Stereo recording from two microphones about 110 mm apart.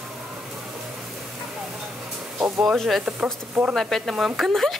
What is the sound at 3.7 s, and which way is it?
Speech, centre (ahead or behind).